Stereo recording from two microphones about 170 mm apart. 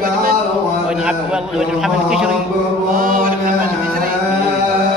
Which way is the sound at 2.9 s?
55° right (ahead or behind).